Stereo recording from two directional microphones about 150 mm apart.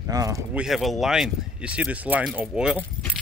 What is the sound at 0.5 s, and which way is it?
Speech, centre (ahead or behind).